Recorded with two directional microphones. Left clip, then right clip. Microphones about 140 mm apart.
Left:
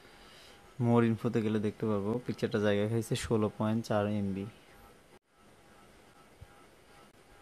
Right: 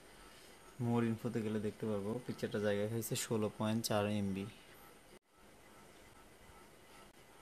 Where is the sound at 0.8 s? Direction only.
50° left (ahead or behind); by 4.5 s 20° left (ahead or behind).